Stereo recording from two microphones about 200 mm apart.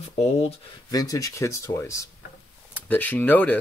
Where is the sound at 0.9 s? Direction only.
20° left (ahead or behind).